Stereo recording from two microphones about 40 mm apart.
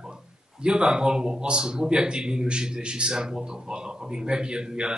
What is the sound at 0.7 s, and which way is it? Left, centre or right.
A man's voice, right.